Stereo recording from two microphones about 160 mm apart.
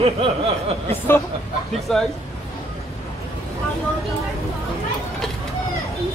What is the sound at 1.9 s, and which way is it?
Speech, 5° left (ahead or behind).